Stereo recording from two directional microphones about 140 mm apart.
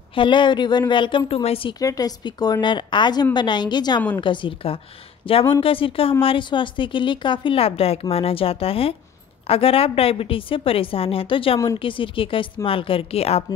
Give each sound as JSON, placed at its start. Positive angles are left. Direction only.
{"t": 0.1, "sound": "a woman's voice", "side_deg": 35}
{"t": 1.8, "sound": "a woman's voice", "side_deg": 25}